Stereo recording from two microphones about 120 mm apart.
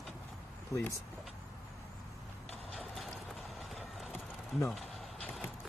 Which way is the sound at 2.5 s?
5° left (ahead or behind).